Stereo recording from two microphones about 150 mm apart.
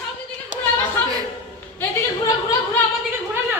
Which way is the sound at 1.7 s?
20° left (ahead or behind).